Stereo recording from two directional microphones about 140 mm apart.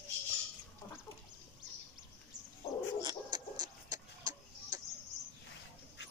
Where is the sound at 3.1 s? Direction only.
30° right (ahead or behind).